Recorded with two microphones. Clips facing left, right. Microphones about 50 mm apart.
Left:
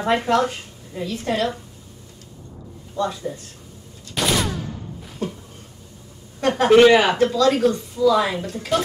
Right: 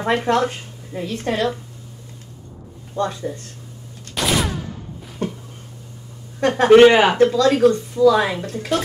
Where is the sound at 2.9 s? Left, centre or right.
Right.